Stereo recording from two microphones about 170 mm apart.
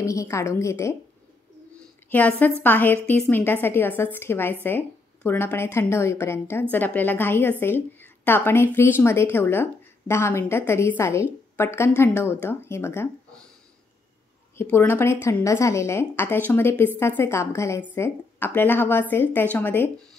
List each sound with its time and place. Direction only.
0.0 s a woman's voice: 15° left (ahead or behind)
2.0 s a woman's voice: 10° left (ahead or behind)
14.6 s a woman's voice: 10° left (ahead or behind)